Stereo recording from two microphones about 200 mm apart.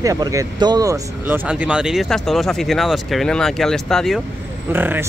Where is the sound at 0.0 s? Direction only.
15° right (ahead or behind); by 4.2 s centre (ahead or behind).